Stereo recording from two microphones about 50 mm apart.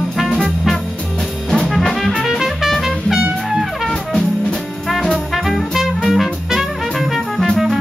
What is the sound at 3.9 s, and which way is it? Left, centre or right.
Music, centre.